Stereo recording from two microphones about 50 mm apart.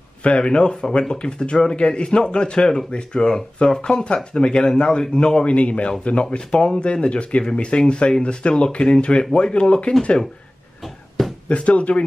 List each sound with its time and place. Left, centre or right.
0.2 s speech: left
11.4 s speech: left